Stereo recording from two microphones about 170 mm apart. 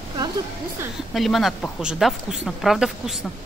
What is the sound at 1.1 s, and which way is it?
A woman's voice, centre (ahead or behind).